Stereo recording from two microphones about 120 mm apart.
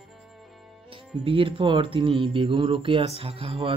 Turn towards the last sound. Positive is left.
turn(degrees=-50)  # may be behind; listen again after turning